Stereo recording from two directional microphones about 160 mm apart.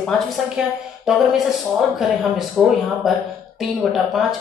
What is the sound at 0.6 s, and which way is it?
A woman's voice, 5° right (ahead or behind).